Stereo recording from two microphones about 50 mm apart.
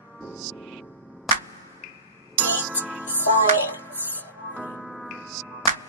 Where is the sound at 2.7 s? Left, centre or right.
Right.